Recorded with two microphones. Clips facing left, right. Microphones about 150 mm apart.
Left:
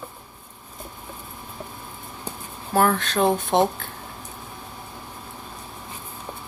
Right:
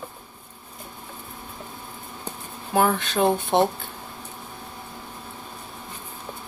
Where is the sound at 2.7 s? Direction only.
10° right (ahead or behind).